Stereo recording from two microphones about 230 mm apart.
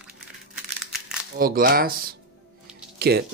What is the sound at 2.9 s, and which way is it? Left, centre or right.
Music, right.